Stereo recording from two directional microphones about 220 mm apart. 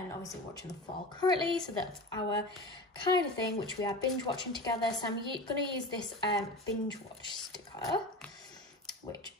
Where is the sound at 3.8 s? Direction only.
20° left (ahead or behind).